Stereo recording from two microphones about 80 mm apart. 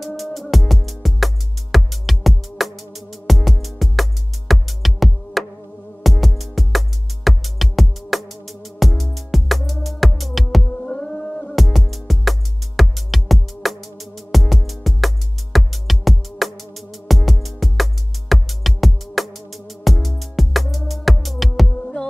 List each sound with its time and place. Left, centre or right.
0.0 s music: centre
10.9 s a sound: centre
11.5 s music: centre